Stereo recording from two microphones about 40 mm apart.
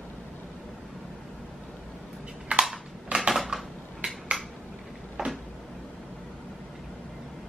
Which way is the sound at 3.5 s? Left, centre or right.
Centre.